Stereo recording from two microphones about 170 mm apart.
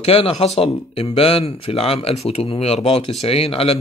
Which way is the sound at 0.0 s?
35° left (ahead or behind).